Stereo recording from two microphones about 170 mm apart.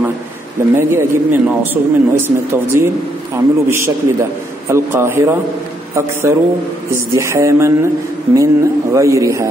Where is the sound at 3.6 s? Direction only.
15° right (ahead or behind).